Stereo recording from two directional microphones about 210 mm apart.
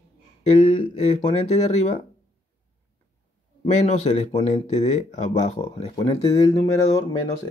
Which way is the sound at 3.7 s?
35° left (ahead or behind).